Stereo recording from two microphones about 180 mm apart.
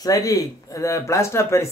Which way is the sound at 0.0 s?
20° left (ahead or behind).